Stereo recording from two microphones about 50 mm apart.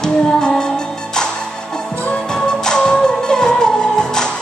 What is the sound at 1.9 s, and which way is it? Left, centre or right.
Music, left.